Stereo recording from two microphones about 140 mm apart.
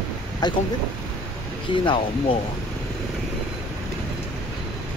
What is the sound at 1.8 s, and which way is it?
Speech, 35° left (ahead or behind).